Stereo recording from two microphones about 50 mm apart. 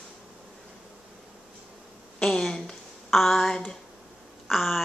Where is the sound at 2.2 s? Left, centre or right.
Centre.